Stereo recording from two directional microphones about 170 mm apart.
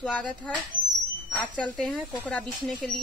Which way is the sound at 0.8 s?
50° right (ahead or behind).